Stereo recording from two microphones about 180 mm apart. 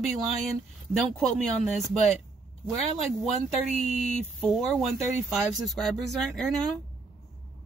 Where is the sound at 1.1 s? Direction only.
Centre (ahead or behind).